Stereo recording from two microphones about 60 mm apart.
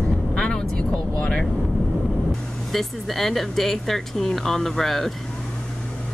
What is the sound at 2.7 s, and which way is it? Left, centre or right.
Speech, centre.